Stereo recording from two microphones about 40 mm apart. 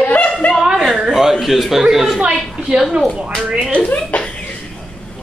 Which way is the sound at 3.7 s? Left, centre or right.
Left.